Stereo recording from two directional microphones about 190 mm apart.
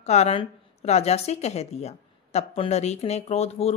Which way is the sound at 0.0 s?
35° left (ahead or behind).